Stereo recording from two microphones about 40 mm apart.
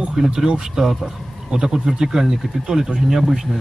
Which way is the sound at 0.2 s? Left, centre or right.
Centre.